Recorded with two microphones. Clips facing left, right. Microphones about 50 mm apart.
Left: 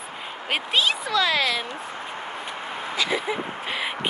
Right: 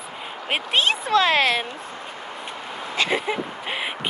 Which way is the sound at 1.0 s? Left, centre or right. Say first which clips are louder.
Right 4 dB; right.